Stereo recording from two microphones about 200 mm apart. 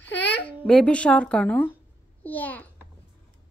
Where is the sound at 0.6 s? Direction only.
5° left (ahead or behind).